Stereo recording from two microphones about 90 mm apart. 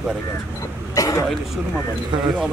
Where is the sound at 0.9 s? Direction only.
40° left (ahead or behind).